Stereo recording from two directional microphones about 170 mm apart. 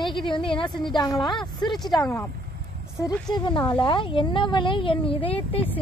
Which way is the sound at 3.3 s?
25° left (ahead or behind).